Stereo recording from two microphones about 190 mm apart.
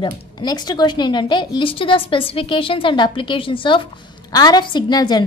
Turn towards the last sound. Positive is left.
turn(degrees=20)  # may be behind; listen again after turning